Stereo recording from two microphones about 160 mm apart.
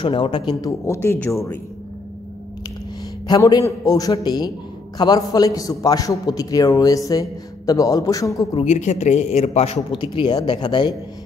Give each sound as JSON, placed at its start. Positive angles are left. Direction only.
{"t": 0.0, "sound": "a man's voice", "side_deg": 30}
{"t": 3.3, "sound": "a man's voice", "side_deg": 25}
{"t": 8.5, "sound": "a man's voice", "side_deg": 45}
{"t": 9.9, "sound": "a man's voice", "side_deg": 30}